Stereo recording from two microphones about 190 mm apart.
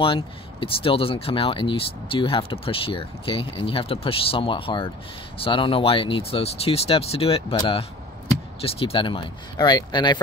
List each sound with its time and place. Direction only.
0.0 s speech: 25° left (ahead or behind)